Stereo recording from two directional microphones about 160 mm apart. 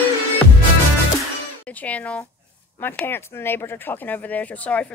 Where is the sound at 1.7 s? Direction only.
10° left (ahead or behind).